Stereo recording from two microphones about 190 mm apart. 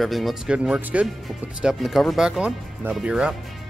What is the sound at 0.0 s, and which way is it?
Speech, centre (ahead or behind).